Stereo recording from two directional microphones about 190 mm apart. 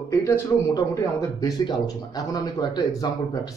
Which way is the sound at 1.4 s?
20° left (ahead or behind).